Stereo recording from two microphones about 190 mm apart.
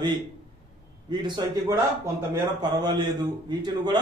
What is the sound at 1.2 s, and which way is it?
A man's voice, 20° right (ahead or behind).